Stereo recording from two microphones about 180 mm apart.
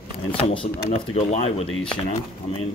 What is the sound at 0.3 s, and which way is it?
Speech, 30° left (ahead or behind).